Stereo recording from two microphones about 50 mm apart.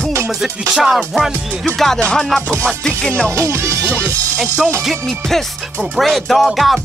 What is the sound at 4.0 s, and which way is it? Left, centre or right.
Speech, right.